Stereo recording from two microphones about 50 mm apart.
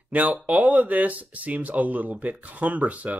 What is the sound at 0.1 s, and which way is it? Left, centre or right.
Speech, right.